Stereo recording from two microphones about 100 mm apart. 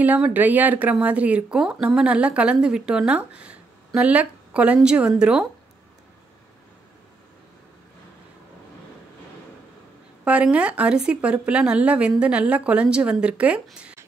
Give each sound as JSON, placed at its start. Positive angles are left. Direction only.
{"t": 0.0, "sound": "a woman's voice", "side_deg": -15}
{"t": 10.2, "sound": "a woman's voice", "side_deg": -10}